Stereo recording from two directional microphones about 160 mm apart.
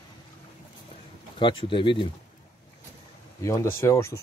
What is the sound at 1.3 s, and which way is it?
Speech, 30° left (ahead or behind).